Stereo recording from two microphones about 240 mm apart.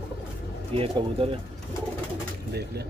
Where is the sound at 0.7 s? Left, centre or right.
Right.